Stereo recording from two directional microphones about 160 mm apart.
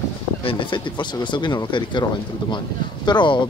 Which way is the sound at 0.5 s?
30° left (ahead or behind).